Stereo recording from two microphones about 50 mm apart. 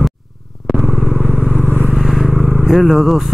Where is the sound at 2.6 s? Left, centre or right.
Centre.